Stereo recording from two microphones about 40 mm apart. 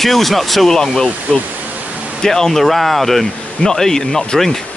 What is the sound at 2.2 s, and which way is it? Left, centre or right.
Speech, centre.